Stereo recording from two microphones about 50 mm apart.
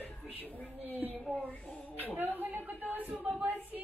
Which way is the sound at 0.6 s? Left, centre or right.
Left.